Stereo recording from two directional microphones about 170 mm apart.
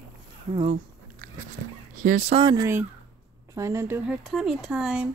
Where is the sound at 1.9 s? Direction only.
50° right (ahead or behind).